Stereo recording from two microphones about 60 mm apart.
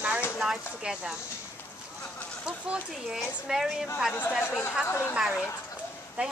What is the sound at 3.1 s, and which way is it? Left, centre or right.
Speech, centre.